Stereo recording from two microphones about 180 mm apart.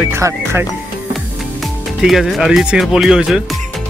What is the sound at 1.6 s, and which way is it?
Speech, centre (ahead or behind).